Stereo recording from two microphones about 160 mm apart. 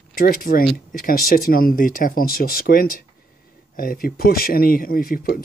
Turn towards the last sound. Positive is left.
turn(degrees=65)  # may be behind; listen again after turning